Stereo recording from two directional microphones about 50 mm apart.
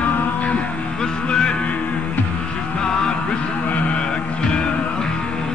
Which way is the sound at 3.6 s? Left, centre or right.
Left.